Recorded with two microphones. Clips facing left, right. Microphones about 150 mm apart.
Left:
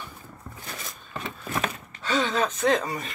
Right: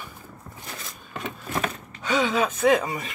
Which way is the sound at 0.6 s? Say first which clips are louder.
Even; 10° right (ahead or behind).